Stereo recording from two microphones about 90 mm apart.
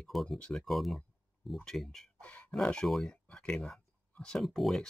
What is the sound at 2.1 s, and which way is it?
Speech, 15° left (ahead or behind).